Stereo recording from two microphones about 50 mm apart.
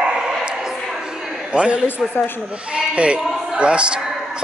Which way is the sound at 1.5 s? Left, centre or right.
Right.